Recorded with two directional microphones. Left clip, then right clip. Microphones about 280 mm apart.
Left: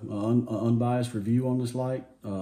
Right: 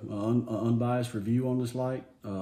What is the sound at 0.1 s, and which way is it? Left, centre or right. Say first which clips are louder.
Speech: left 2 dB; centre.